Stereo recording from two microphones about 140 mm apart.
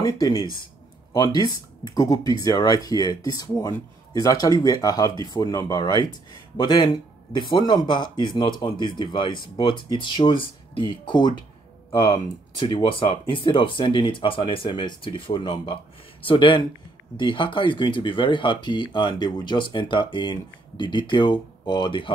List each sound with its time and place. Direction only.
0.3 s speech: 40° left (ahead or behind)